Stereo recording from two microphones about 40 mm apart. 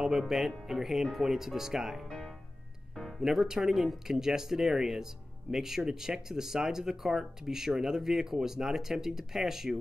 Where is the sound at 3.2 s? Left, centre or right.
Centre.